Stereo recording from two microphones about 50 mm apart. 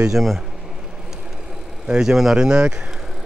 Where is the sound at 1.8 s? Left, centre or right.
Centre.